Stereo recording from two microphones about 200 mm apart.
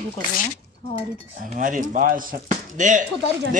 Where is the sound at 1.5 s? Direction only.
40° right (ahead or behind).